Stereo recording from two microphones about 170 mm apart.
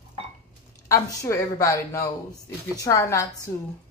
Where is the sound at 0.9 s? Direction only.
20° left (ahead or behind).